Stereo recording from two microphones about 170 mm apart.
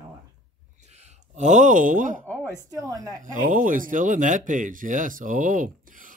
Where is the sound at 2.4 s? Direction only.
20° right (ahead or behind).